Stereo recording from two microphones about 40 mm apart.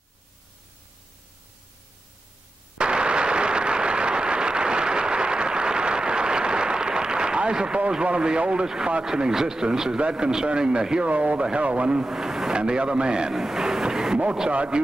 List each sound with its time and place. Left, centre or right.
2.8 s a sound: right
8.6 s a man's voice: centre
11.1 s a man's voice: right; by 14.2 s centre
14.5 s a man's voice: right